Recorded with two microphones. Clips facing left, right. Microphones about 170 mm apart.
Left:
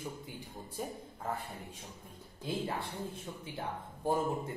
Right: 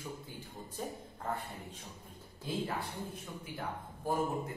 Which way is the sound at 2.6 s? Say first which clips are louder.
Left 1 dB; 25° left (ahead or behind).